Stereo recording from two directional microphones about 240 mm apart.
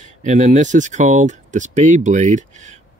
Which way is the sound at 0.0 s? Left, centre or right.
Right.